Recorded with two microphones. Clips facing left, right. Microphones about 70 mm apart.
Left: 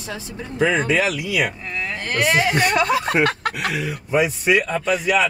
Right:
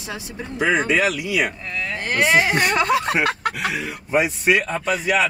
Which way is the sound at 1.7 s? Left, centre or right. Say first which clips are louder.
Even; centre.